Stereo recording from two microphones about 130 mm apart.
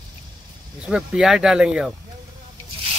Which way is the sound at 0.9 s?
5° right (ahead or behind).